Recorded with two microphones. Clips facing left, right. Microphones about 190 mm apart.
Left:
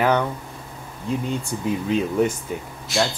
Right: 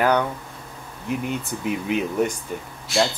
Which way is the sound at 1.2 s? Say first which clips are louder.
Left 1 dB; 20° right (ahead or behind).